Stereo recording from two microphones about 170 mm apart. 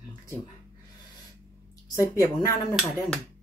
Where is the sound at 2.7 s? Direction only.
Centre (ahead or behind).